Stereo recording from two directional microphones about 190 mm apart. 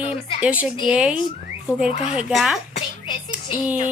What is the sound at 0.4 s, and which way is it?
Speech, 5° right (ahead or behind).